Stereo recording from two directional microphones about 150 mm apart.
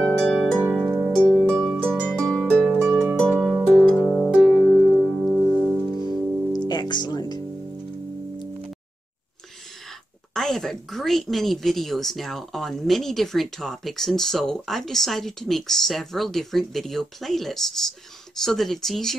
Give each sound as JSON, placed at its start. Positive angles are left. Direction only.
{"t": 0.0, "sound": "harp", "side_deg": 5}
{"t": 3.9, "sound": "music", "side_deg": 15}
{"t": 4.4, "sound": "music", "side_deg": 0}
{"t": 6.7, "sound": "music", "side_deg": 30}
{"t": 10.3, "sound": "speech", "side_deg": 5}